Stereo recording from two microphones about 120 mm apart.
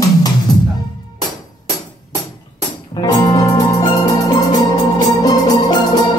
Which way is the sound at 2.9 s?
30° left (ahead or behind).